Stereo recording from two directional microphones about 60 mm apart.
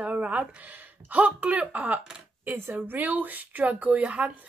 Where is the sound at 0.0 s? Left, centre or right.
Right.